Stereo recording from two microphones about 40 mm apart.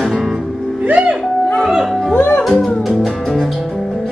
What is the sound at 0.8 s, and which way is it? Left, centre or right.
Music, right.